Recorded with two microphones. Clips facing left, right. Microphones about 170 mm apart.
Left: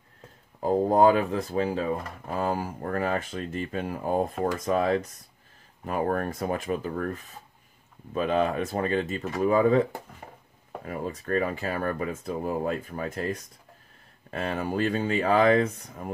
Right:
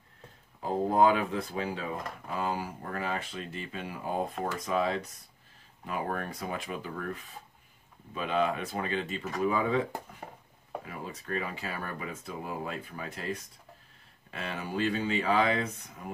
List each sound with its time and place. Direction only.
0.6 s speech: 40° left (ahead or behind)
10.9 s speech: 45° left (ahead or behind)